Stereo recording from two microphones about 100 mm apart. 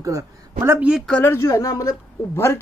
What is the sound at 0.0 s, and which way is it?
Speech, 30° right (ahead or behind).